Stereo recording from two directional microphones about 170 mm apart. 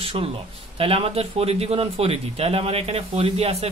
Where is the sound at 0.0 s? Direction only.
35° right (ahead or behind).